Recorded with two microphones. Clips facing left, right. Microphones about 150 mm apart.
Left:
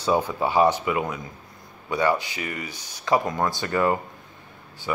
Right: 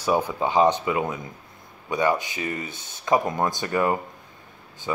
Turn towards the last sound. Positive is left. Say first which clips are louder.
# even
turn(degrees=-20)  # may be behind; listen again after turning